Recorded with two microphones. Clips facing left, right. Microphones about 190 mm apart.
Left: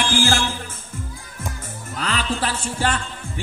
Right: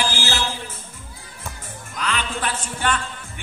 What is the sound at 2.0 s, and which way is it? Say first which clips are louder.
Music: left 2 dB; 35° left (ahead or behind).